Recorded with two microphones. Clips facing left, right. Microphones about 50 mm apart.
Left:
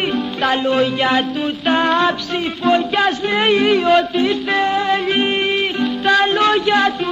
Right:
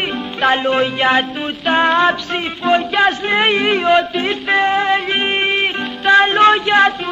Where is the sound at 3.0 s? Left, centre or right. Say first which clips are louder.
Right 2 dB; right.